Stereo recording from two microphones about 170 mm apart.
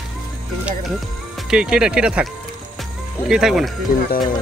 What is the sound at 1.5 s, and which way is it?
Speech, 5° right (ahead or behind).